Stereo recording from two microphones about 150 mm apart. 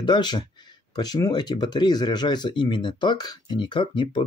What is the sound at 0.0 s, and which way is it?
Speech, 30° left (ahead or behind).